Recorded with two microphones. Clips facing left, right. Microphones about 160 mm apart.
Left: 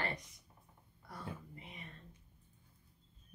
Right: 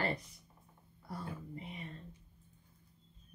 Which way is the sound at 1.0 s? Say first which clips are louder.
Right 3 dB; 30° right (ahead or behind).